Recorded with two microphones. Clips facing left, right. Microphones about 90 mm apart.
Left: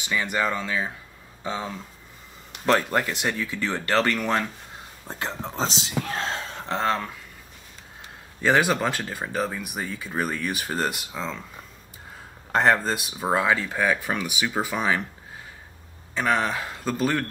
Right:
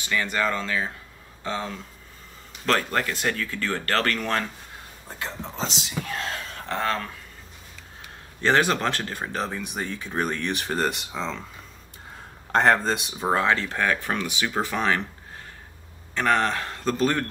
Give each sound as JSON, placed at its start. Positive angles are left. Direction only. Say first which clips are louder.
{"t": 0.0, "sound": "speech", "louder": "even", "side_deg": 15}
{"t": 5.0, "sound": "speech", "louder": "left 3 dB", "side_deg": 35}
{"t": 8.4, "sound": "speech", "louder": "even", "side_deg": 10}
{"t": 12.5, "sound": "speech", "louder": "right 1 dB", "side_deg": 0}
{"t": 16.2, "sound": "speech", "louder": "right 1 dB", "side_deg": 10}